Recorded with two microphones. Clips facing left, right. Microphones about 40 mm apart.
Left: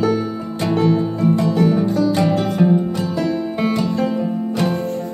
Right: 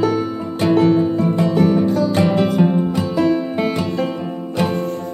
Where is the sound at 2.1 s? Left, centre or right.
Right.